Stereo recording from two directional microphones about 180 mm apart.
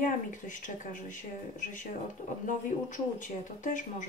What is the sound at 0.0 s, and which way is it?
Speech, 45° left (ahead or behind).